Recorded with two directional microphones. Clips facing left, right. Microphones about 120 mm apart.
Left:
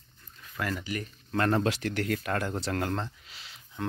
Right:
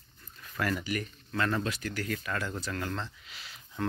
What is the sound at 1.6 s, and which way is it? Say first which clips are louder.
Speech: left 5 dB; 75° left (ahead or behind).